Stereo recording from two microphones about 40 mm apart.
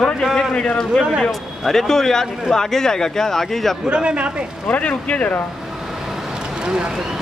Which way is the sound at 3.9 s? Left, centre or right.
Right.